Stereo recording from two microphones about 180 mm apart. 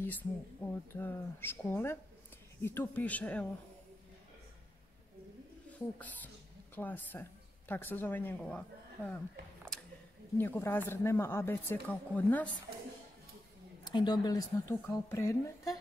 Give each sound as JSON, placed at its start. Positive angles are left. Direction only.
{"t": 0.0, "sound": "speech", "side_deg": 10}
{"t": 5.7, "sound": "speech", "side_deg": 10}
{"t": 10.3, "sound": "speech", "side_deg": 10}
{"t": 13.8, "sound": "a woman's voice", "side_deg": 25}